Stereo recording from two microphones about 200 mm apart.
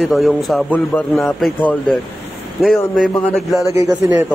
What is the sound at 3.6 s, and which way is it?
Speech, 15° right (ahead or behind).